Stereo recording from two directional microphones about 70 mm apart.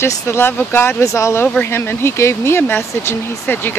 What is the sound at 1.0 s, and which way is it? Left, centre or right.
Speech, left.